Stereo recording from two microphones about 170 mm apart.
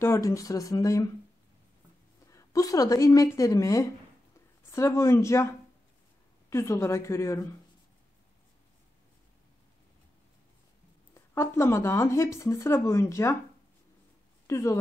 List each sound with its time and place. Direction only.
0.0 s a woman's voice: 15° left (ahead or behind)
2.3 s a woman's voice: 20° left (ahead or behind)
11.1 s speech: 15° left (ahead or behind)
14.5 s speech: 15° left (ahead or behind)